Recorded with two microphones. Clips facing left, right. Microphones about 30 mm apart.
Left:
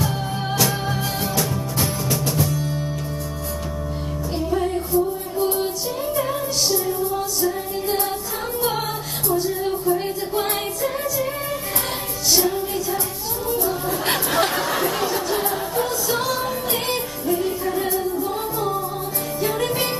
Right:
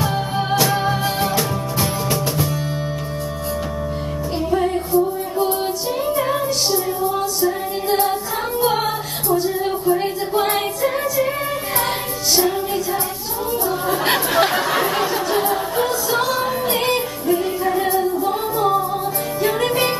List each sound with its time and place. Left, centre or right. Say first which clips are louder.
0.0 s music: right 4 dB; centre
4.5 s music: right 4 dB; centre
12.4 s music: right 4 dB; right
14.0 s music: right 3 dB; centre